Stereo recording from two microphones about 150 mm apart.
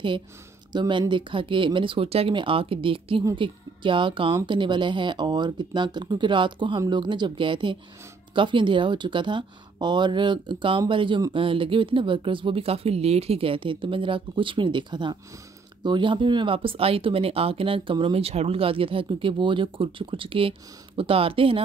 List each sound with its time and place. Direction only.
0.7 s speech: 30° right (ahead or behind)